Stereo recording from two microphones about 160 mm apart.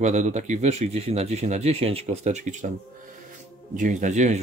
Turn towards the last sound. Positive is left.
turn(degrees=-50)  # may be behind; listen again after turning